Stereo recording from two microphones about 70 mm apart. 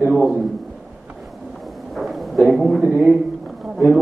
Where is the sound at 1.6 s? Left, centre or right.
Centre.